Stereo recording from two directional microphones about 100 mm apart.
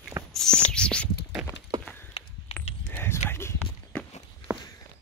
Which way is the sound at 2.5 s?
20° left (ahead or behind).